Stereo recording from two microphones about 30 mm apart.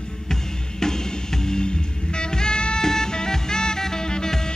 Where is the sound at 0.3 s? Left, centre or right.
Centre.